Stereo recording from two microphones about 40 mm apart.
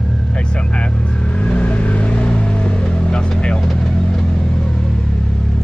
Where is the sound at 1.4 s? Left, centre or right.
Left.